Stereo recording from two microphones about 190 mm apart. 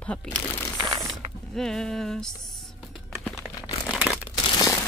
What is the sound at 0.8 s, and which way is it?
Mechanisms, 20° right (ahead or behind).